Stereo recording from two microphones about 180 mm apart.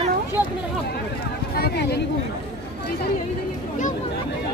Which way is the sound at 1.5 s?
65° left (ahead or behind).